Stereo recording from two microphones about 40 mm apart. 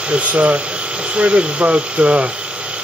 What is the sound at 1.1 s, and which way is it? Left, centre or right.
Speech, right.